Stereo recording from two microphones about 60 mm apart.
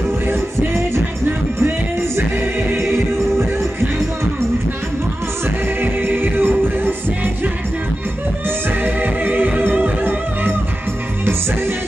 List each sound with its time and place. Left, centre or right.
2.7 s choir: right
5.8 s music: right
8.8 s music: right